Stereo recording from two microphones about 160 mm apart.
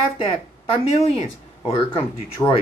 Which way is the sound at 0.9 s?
40° left (ahead or behind).